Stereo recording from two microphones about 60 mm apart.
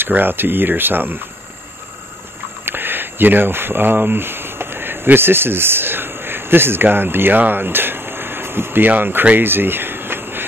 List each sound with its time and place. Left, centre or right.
0.0 s speech: right
2.6 s speech: right